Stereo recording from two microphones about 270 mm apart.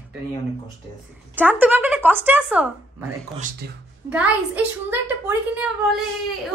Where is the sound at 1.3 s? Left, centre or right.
Centre.